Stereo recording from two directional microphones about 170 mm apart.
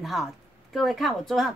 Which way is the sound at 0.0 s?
Centre (ahead or behind).